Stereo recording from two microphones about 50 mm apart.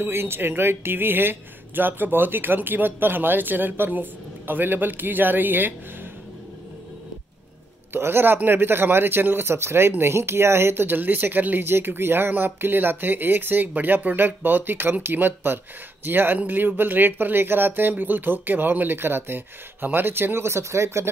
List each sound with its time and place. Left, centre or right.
0.0 s speech: right
7.9 s a man's voice: right